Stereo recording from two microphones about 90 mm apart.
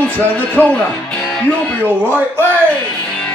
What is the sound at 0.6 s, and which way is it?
Speech, 20° left (ahead or behind).